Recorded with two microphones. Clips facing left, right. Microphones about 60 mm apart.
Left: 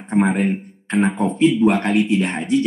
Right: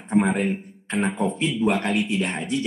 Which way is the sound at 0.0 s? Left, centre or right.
Centre.